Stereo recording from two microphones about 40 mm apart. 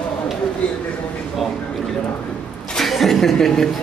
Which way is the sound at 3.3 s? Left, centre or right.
Centre.